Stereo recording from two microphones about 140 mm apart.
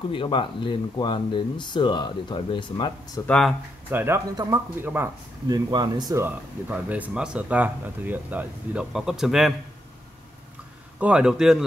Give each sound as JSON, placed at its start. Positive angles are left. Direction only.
{"t": 0.1, "sound": "speech", "side_deg": 35}
{"t": 3.3, "sound": "a man's voice", "side_deg": 5}
{"t": 3.9, "sound": "speech", "side_deg": -15}
{"t": 5.5, "sound": "speech", "side_deg": -30}
{"t": 6.2, "sound": "speech", "side_deg": -10}
{"t": 11.0, "sound": "a man's voice", "side_deg": -5}